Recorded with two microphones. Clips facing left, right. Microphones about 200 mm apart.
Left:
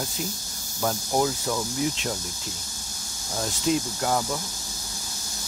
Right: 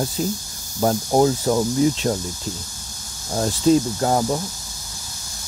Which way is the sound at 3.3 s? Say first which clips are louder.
Right 9 dB; 35° right (ahead or behind).